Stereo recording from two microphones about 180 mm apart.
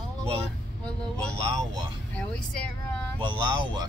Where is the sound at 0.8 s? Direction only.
5° left (ahead or behind).